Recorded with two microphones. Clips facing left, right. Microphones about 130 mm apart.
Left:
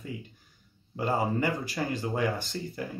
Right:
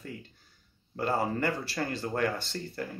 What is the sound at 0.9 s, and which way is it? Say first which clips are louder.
Speech: left 1 dB; 10° left (ahead or behind).